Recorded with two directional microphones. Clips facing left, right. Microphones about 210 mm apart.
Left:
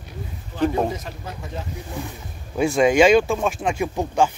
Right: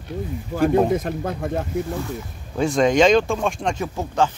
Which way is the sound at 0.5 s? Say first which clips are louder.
Right 4 dB; 50° right (ahead or behind).